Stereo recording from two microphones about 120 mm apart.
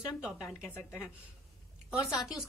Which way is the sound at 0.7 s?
15° left (ahead or behind).